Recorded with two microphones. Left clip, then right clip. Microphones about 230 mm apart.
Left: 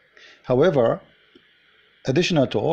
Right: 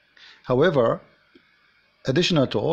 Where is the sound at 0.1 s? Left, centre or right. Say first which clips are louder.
Left 2 dB; centre.